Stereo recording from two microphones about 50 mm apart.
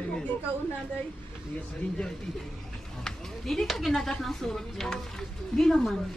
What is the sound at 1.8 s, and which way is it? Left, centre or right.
Speech, left.